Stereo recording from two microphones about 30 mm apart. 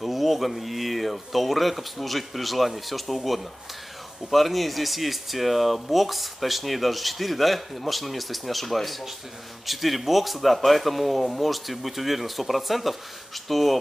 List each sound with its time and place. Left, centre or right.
0.0 s speech: centre
4.3 s speech: centre